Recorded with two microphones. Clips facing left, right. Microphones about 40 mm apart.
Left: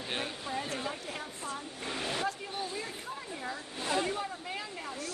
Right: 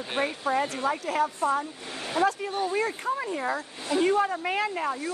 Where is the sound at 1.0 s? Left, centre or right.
Right.